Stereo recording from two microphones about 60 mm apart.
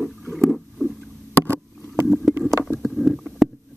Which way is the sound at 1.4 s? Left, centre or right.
Right.